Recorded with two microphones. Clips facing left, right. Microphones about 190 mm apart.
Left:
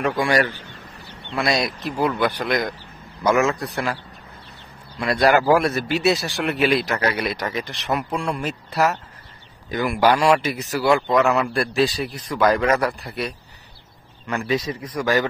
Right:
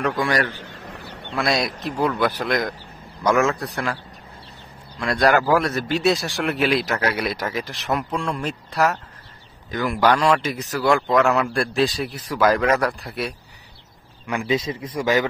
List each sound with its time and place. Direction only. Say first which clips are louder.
0.0 s a man's voice: left 2 dB; 10° left (ahead or behind)
0.6 s fowl: right 4 dB; 55° right (ahead or behind)
1.3 s a man's voice: even; centre (ahead or behind)
4.9 s a man's voice: left 1 dB; 10° left (ahead or behind)
9.7 s a man's voice: left 1 dB; 15° left (ahead or behind)
14.5 s a man's voice: right 1 dB; 25° right (ahead or behind)